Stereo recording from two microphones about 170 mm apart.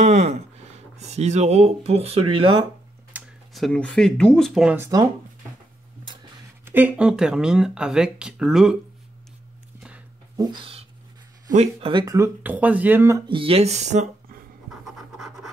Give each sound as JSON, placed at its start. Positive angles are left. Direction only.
{"t": 0.0, "sound": "speech", "side_deg": -40}
{"t": 3.1, "sound": "speech", "side_deg": -5}
{"t": 4.7, "sound": "speech", "side_deg": -15}
{"t": 6.6, "sound": "speech", "side_deg": -10}
{"t": 10.3, "sound": "a sound", "side_deg": -25}
{"t": 11.5, "sound": "speech", "side_deg": -40}
{"t": 11.9, "sound": "speech", "side_deg": -20}
{"t": 12.4, "sound": "speech", "side_deg": -10}
{"t": 13.3, "sound": "speech", "side_deg": -35}
{"t": 15.0, "sound": "scratch", "side_deg": 0}